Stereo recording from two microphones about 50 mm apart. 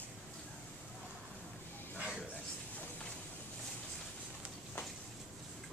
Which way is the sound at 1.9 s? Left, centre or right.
Right.